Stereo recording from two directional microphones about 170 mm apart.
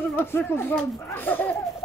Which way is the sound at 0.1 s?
10° left (ahead or behind).